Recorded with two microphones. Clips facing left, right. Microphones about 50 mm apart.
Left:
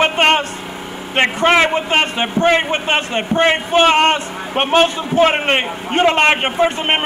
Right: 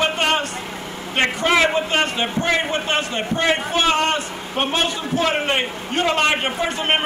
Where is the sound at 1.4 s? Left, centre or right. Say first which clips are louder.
Left 4 dB; left.